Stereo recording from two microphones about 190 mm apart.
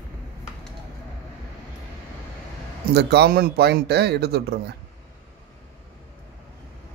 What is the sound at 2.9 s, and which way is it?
Speech, 60° right (ahead or behind).